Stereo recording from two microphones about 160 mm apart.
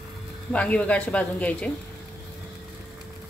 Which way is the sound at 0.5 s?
10° left (ahead or behind).